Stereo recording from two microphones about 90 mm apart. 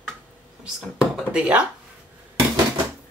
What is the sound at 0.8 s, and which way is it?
Speech, 5° right (ahead or behind).